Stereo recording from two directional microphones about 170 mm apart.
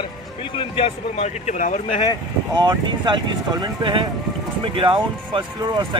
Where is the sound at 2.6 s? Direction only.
25° right (ahead or behind).